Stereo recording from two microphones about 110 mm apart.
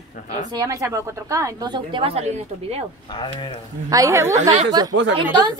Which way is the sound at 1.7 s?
50° right (ahead or behind).